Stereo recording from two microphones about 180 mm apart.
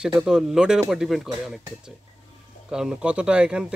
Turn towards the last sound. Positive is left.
turn(degrees=-5)  # may be behind; listen again after turning